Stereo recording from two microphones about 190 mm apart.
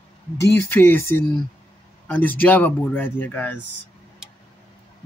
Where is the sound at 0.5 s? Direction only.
15° left (ahead or behind).